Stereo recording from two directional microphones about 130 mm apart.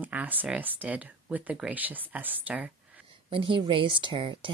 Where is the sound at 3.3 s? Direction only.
40° right (ahead or behind).